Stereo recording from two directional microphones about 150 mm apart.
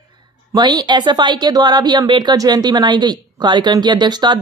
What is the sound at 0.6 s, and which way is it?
A woman's voice, 30° right (ahead or behind).